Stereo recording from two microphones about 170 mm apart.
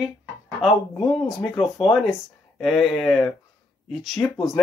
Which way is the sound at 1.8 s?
Centre (ahead or behind).